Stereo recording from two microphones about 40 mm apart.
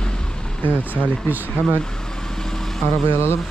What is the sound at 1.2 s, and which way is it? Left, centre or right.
Speech, right.